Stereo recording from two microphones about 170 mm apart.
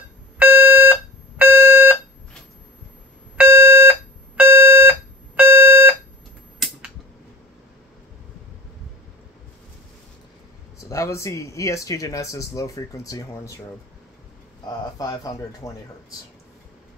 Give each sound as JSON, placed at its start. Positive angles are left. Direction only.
{"t": 0.4, "sound": "alarm", "side_deg": -10}
{"t": 3.3, "sound": "alarm", "side_deg": -15}
{"t": 10.8, "sound": "speech", "side_deg": 20}
{"t": 14.6, "sound": "speech", "side_deg": 25}